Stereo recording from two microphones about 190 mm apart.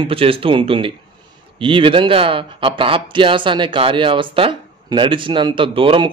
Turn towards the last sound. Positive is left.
turn(degrees=-30)  # may be behind; listen again after turning